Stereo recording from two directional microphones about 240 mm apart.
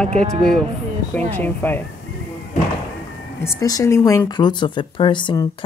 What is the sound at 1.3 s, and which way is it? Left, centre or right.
Speech, centre.